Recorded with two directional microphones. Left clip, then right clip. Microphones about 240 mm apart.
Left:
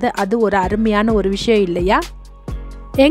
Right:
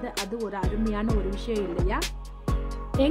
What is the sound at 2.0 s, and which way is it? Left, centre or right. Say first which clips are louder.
Music: even; centre.